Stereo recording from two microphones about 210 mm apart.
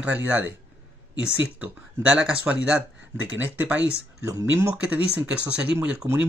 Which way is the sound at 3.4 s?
10° right (ahead or behind).